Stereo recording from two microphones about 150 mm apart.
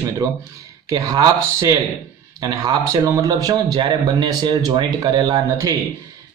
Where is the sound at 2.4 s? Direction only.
25° right (ahead or behind).